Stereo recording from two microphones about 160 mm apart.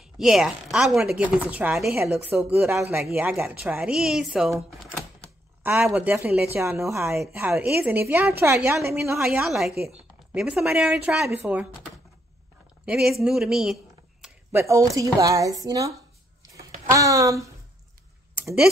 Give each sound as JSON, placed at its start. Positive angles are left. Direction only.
{"t": 0.0, "sound": "speech", "side_deg": -5}
{"t": 9.1, "sound": "speech", "side_deg": -5}
{"t": 12.8, "sound": "speech", "side_deg": -5}
{"t": 14.5, "sound": "a woman's voice", "side_deg": -15}
{"t": 16.9, "sound": "a woman's voice", "side_deg": -20}